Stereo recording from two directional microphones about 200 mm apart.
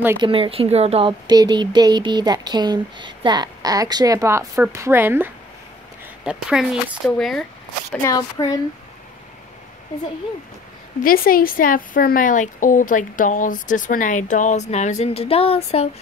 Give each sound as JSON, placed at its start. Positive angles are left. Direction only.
{"t": 0.2, "sound": "speech", "side_deg": -25}
{"t": 8.0, "sound": "speech", "side_deg": 15}
{"t": 11.0, "sound": "speech", "side_deg": 45}